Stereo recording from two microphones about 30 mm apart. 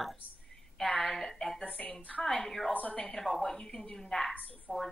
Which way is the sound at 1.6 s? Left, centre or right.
Left.